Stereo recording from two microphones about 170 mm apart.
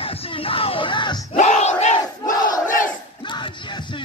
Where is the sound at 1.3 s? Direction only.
45° left (ahead or behind).